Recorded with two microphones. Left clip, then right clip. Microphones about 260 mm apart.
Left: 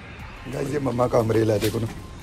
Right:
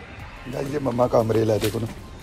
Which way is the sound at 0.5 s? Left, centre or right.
Centre.